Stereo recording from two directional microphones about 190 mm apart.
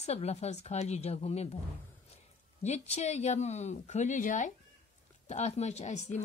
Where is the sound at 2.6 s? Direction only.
35° left (ahead or behind).